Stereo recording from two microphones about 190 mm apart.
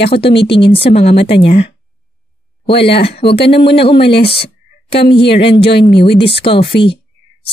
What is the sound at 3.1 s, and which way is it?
Speech, 60° left (ahead or behind).